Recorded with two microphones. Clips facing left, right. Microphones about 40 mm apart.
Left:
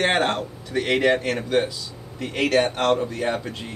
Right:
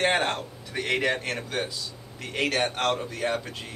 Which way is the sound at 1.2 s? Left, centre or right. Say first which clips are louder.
Left 8 dB; centre.